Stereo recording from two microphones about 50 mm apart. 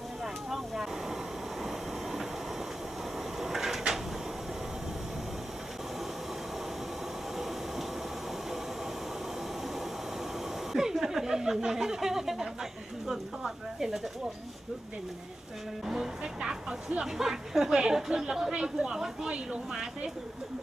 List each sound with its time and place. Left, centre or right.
3.3 s cupboard open or close: centre
10.7 s speech: centre
15.9 s a woman's voice: centre